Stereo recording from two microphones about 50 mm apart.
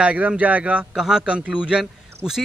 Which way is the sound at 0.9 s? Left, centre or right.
Centre.